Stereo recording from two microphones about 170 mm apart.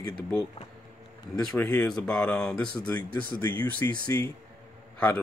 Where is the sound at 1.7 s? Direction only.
5° left (ahead or behind).